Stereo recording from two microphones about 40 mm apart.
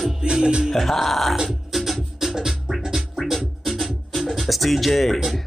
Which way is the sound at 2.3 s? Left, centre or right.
Centre.